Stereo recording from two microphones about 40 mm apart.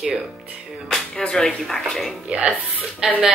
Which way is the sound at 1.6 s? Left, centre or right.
Centre.